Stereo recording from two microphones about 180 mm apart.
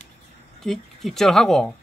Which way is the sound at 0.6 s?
Centre (ahead or behind).